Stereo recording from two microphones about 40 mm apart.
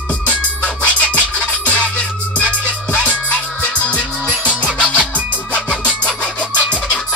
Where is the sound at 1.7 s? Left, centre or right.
Left.